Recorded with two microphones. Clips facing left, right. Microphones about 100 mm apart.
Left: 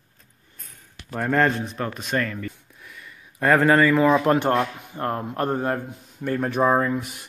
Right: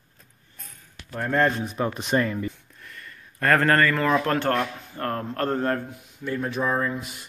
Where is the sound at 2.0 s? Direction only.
20° right (ahead or behind).